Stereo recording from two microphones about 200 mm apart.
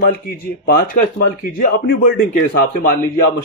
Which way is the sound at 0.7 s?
45° left (ahead or behind).